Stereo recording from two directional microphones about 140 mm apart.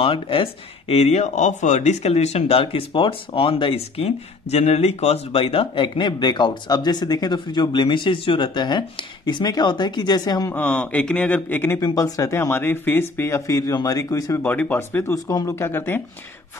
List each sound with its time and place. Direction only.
0.0 s speech: 40° left (ahead or behind)
10.5 s speech: 10° left (ahead or behind)
11.8 s speech: 25° left (ahead or behind)
14.4 s speech: 10° left (ahead or behind)